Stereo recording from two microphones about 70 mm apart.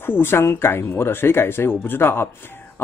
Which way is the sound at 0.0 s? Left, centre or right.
Left.